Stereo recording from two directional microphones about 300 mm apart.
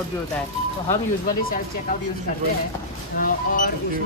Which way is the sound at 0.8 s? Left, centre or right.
Left.